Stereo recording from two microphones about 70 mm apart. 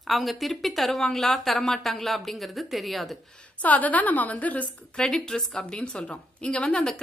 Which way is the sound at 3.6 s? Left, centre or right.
Left.